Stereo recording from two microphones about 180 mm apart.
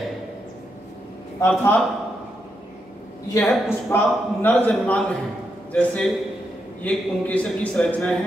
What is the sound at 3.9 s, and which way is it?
A man's voice, 10° left (ahead or behind).